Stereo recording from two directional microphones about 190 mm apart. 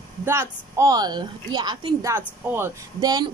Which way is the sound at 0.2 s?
15° right (ahead or behind).